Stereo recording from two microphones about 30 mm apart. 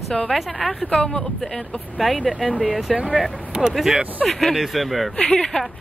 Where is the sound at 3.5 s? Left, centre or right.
Right.